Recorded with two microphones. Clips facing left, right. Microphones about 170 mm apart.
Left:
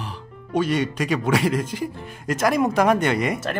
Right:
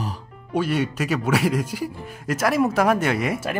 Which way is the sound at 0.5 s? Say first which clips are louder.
Left 1 dB; 10° right (ahead or behind).